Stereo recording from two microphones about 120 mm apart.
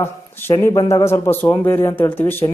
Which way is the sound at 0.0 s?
20° left (ahead or behind).